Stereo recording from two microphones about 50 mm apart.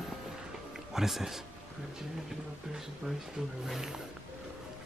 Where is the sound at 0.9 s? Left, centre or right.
Centre.